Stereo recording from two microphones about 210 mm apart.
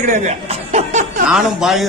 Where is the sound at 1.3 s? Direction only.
Centre (ahead or behind).